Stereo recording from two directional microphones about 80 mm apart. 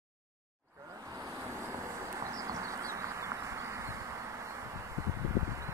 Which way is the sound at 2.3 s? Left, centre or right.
Right.